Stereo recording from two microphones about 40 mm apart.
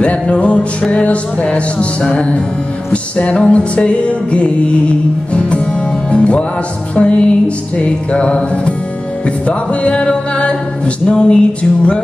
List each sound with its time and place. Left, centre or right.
0.0 s music: left
6.0 s music: left